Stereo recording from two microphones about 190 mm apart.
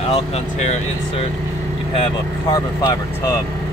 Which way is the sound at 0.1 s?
35° left (ahead or behind).